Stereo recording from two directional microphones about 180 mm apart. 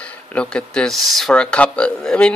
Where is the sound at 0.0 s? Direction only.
5° left (ahead or behind).